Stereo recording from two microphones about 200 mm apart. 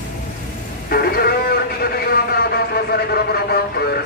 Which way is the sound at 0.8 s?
50° left (ahead or behind).